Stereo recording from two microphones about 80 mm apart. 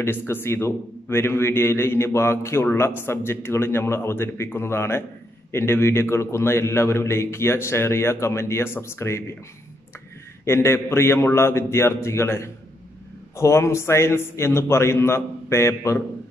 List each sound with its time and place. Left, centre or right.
0.0 s a man's voice: left
10.4 s a man's voice: left